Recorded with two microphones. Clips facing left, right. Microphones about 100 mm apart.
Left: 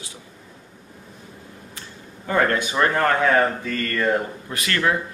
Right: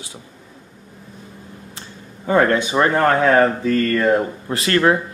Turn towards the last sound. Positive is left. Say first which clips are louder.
# right 6 dB
turn(degrees=-35)  # may be behind; listen again after turning